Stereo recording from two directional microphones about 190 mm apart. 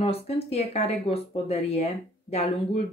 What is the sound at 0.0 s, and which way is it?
Speech, 30° left (ahead or behind).